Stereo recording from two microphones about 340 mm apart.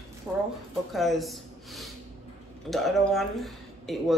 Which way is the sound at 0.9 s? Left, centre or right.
Centre.